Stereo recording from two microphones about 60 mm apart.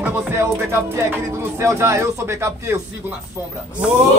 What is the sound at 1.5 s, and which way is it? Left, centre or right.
Music, right.